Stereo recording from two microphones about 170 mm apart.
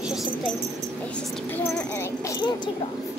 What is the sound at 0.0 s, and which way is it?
Dog, centre (ahead or behind).